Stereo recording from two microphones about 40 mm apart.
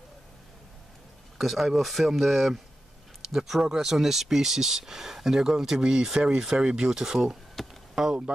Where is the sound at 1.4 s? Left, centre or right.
Centre.